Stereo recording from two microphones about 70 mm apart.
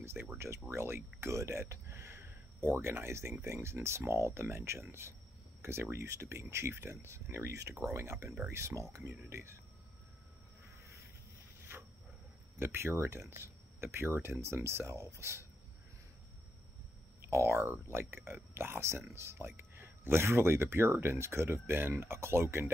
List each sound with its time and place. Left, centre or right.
0.0 s speech: right
12.5 s speech: right
17.2 s speech: right